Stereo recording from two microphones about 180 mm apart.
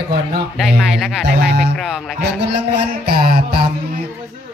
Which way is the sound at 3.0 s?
60° right (ahead or behind).